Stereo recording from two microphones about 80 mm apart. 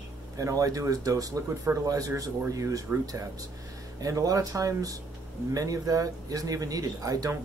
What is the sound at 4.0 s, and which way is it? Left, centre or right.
Speech, right.